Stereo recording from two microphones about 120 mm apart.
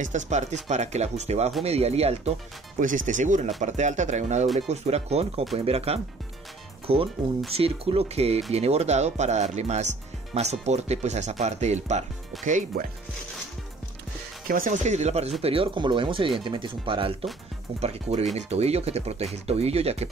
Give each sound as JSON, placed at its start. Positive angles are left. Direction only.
{"t": 0.0, "sound": "speech", "side_deg": -80}
{"t": 2.8, "sound": "speech", "side_deg": -90}
{"t": 4.6, "sound": "speech", "side_deg": -65}
{"t": 14.7, "sound": "speech", "side_deg": -80}
{"t": 15.4, "sound": "speech", "side_deg": -50}
{"t": 17.7, "sound": "speech", "side_deg": -65}